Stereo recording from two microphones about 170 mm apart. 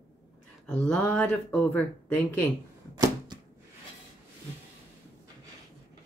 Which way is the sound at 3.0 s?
20° right (ahead or behind).